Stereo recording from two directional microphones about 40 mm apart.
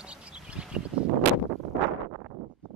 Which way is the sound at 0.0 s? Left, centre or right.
Right.